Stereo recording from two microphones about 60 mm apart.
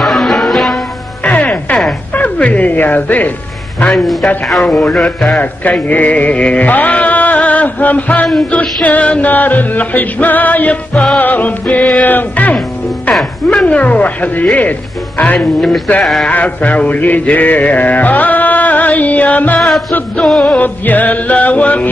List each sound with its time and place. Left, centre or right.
0.0 s music: centre
1.2 s music: left
3.9 s a man's voice: centre
5.4 s mantra: left
5.9 s music: left
8.8 s mantra: left
13.2 s mantra: centre
16.0 s a sound: centre
16.3 s mantra: left
20.2 s a man's voice: centre
20.6 s mantra: left